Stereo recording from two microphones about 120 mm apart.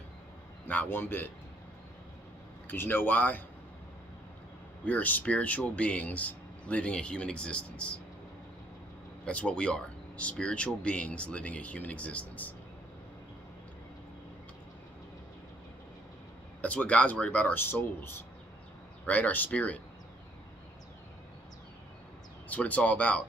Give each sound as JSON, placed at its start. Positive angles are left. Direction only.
{"t": 0.7, "sound": "speech", "side_deg": 15}
{"t": 2.7, "sound": "speech", "side_deg": 15}
{"t": 4.8, "sound": "speech", "side_deg": 15}
{"t": 9.2, "sound": "speech", "side_deg": 10}
{"t": 16.6, "sound": "speech", "side_deg": 10}
{"t": 22.5, "sound": "speech", "side_deg": 10}